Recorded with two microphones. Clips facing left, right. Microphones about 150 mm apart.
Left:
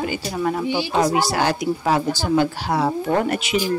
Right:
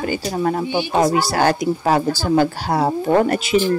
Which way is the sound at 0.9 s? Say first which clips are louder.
Right 3 dB; 45° right (ahead or behind).